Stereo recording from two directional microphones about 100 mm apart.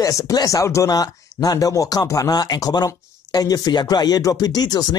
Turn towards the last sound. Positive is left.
turn(degrees=40)  # may be behind; listen again after turning